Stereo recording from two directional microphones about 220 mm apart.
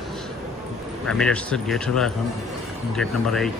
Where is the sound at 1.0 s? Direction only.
5° left (ahead or behind).